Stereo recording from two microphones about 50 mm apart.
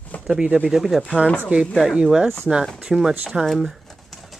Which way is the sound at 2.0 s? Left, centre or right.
Centre.